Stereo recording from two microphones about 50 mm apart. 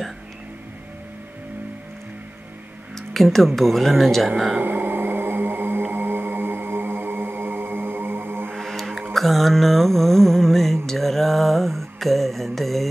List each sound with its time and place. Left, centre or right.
3.1 s speech: centre
4.6 s music: right
8.5 s a sound: centre
9.1 s mantra: centre